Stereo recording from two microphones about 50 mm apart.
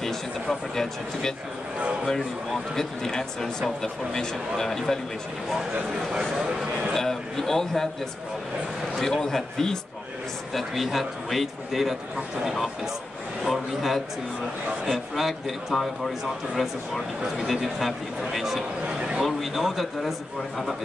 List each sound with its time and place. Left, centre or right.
0.0 s speech: centre
6.9 s speech: centre
9.0 s speech: centre
10.5 s a man's voice: centre
17.2 s a man's voice: centre
18.9 s a man's voice: centre
19.2 s a man's voice: centre